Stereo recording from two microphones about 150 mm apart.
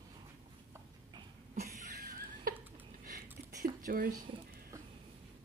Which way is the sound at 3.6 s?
65° right (ahead or behind).